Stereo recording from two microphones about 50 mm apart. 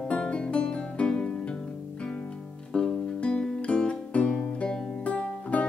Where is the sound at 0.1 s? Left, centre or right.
Centre.